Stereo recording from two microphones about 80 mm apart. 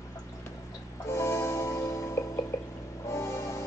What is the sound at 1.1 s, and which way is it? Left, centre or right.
Music, left.